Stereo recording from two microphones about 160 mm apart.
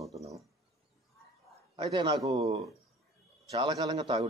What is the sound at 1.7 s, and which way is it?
Speech, 25° right (ahead or behind).